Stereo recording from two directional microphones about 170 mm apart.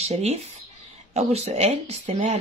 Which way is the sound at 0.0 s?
40° right (ahead or behind).